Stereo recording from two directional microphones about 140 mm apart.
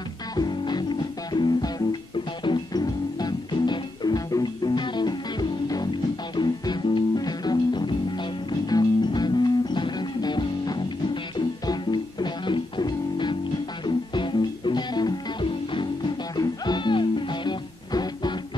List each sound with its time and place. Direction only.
0.4 s music: 30° left (ahead or behind)